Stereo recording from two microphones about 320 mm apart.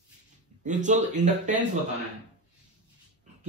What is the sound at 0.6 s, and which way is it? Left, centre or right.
Speech, right.